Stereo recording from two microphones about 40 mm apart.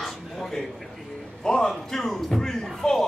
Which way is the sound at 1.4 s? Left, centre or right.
Centre.